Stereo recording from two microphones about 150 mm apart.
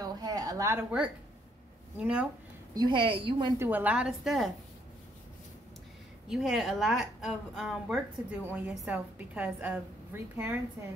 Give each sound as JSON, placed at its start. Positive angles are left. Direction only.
{"t": 0.0, "sound": "a sound", "side_deg": -25}
{"t": 2.0, "sound": "a woman's voice", "side_deg": -10}
{"t": 2.7, "sound": "a woman's voice", "side_deg": -30}
{"t": 3.5, "sound": "a woman's voice", "side_deg": -15}
{"t": 6.2, "sound": "a woman's voice", "side_deg": 0}